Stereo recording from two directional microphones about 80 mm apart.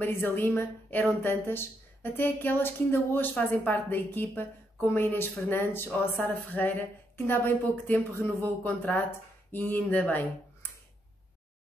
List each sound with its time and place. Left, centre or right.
0.0 s a woman's voice: left